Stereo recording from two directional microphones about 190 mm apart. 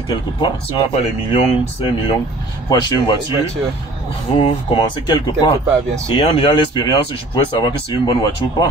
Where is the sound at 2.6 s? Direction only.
20° left (ahead or behind).